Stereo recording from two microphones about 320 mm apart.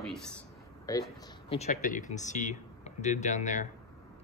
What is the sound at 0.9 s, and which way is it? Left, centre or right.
Speech, centre.